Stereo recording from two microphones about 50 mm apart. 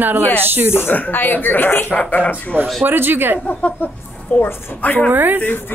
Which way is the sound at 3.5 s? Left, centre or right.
Left.